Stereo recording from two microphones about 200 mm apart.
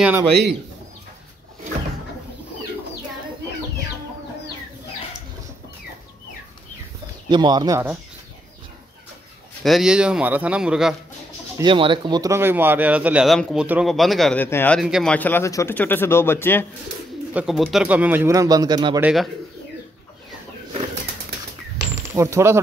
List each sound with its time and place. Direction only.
0.3 s speech: 55° right (ahead or behind)
7.2 s speech: 20° right (ahead or behind)
9.6 s a man's voice: centre (ahead or behind)
11.5 s speech: 25° right (ahead or behind); by 14.8 s 10° left (ahead or behind)
14.8 s a man's voice: centre (ahead or behind)
15.1 s speech: 10° left (ahead or behind)
17.3 s speech: 5° right (ahead or behind); by 18.9 s 20° right (ahead or behind)
18.9 s speech: 5° right (ahead or behind)
21.9 s a sound: 15° right (ahead or behind)